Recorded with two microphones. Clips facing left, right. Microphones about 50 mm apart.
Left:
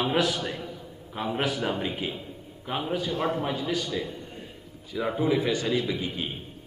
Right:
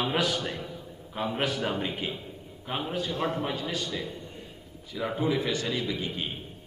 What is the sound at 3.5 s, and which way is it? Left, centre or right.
Speech, centre.